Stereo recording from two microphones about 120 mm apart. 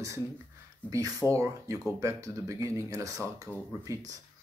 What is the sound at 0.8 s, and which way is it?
Speech, 10° left (ahead or behind).